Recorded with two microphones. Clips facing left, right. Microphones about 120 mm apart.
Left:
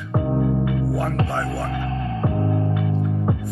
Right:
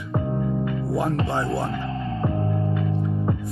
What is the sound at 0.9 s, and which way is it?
Speech, 20° right (ahead or behind).